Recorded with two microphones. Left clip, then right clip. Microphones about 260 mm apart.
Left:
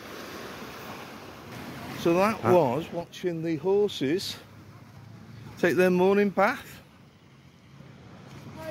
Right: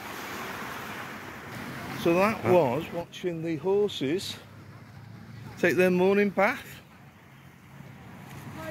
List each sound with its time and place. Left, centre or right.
2.0 s speech: centre
3.0 s speech: left
5.6 s speech: centre